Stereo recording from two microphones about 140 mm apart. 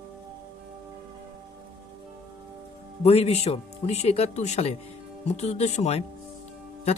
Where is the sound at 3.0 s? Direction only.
45° left (ahead or behind).